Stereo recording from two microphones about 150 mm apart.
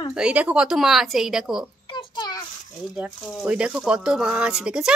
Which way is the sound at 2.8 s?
Centre (ahead or behind).